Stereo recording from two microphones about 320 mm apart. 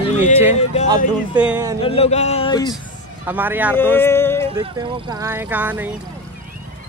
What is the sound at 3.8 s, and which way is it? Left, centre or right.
Speech, centre.